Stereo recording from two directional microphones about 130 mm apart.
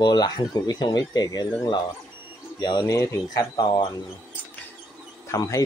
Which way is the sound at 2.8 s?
20° left (ahead or behind).